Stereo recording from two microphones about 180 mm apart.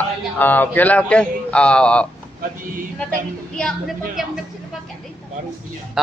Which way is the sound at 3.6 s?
5° left (ahead or behind).